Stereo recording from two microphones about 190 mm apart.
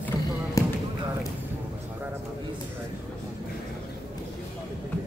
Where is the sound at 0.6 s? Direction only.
15° left (ahead or behind).